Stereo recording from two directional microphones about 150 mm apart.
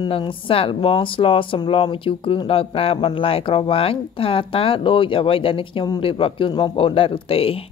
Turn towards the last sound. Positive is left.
turn(degrees=40)  # may be behind; listen again after turning